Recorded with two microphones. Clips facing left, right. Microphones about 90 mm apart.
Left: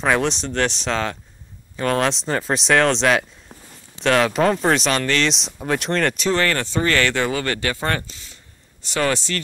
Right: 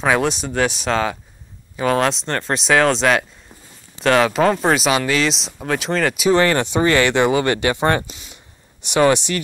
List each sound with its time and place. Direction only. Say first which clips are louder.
0.0 s speech: right 2 dB; 5° right (ahead or behind); by 9.4 s 20° right (ahead or behind)